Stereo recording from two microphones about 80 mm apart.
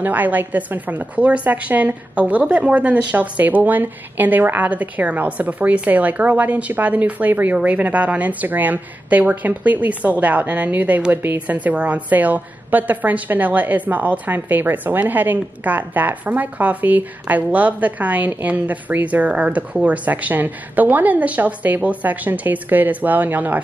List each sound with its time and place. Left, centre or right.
0.0 s a woman's voice: right